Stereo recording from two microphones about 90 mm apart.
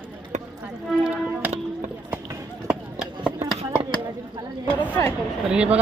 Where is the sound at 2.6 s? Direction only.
5° right (ahead or behind).